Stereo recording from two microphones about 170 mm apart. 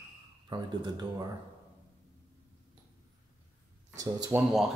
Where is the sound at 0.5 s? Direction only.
25° right (ahead or behind).